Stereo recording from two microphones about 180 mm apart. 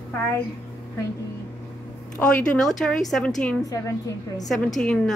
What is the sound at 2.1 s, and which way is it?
A woman's voice, 5° left (ahead or behind).